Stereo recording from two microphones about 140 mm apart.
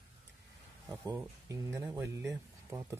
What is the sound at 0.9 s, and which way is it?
Speech, 25° right (ahead or behind).